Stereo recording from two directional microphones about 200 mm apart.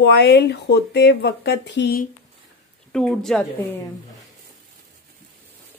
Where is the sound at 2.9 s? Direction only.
5° left (ahead or behind).